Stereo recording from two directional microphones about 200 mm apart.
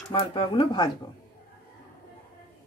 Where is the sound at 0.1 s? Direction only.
25° left (ahead or behind).